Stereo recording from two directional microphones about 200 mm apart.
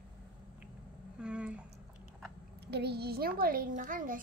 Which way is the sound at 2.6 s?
55° right (ahead or behind).